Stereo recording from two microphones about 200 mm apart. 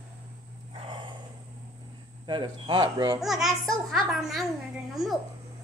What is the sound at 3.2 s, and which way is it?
A child's voice, centre (ahead or behind).